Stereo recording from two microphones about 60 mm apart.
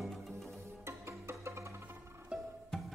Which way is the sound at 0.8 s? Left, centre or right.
Right.